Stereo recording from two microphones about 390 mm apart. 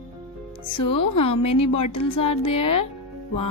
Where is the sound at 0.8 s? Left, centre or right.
Left.